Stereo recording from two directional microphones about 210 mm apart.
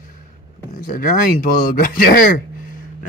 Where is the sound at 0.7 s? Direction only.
40° left (ahead or behind).